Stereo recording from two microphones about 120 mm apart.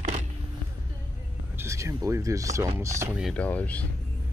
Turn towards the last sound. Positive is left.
turn(degrees=10)  # may be behind; listen again after turning